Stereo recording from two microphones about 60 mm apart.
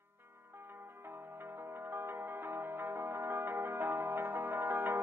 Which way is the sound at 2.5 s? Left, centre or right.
Right.